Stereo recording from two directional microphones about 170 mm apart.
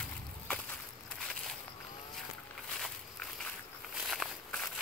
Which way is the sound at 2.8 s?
5° left (ahead or behind).